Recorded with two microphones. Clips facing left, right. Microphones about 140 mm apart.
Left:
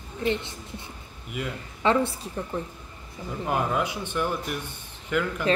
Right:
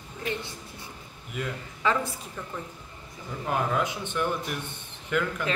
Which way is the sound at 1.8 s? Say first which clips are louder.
Left 4 dB; 30° left (ahead or behind).